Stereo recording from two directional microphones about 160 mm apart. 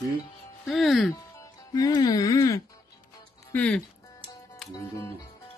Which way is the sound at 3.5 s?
10° left (ahead or behind).